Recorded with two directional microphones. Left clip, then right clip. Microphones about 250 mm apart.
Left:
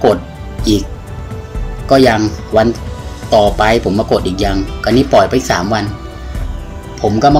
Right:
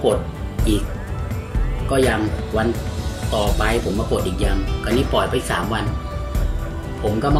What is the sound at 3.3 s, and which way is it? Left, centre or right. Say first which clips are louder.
Speech: left 11 dB; left.